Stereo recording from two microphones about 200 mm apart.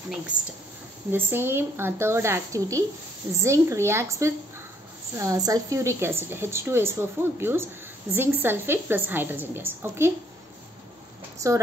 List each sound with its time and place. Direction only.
1.1 s a woman's voice: 10° right (ahead or behind)
11.3 s speech: 15° right (ahead or behind)